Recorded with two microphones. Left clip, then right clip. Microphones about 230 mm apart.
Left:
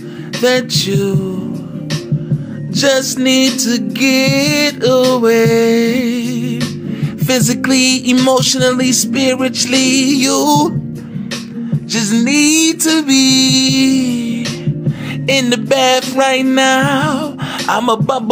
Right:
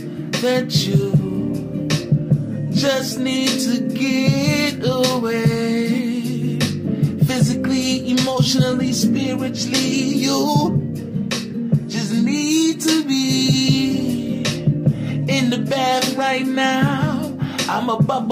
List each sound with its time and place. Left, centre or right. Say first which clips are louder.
0.5 s music: left 6 dB; left
2.7 s music: left 7 dB; left
7.2 s music: left 9 dB; left
11.9 s music: left 10 dB; left
15.2 s music: left 8 dB; left